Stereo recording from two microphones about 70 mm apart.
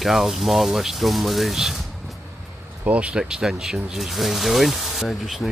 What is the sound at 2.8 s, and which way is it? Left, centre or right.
Speech, centre.